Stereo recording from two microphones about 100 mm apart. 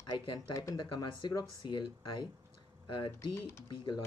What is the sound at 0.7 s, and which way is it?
Speech, 50° left (ahead or behind).